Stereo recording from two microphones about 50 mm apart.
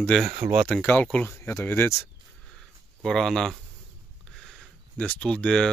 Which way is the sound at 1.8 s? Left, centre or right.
Left.